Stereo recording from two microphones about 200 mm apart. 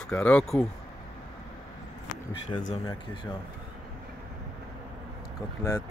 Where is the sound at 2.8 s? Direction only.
25° left (ahead or behind).